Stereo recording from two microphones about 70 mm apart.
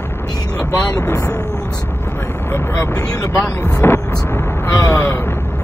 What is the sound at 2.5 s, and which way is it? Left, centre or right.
Speech, left.